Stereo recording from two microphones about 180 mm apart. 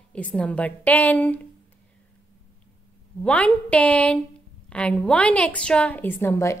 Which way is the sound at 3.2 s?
5° left (ahead or behind).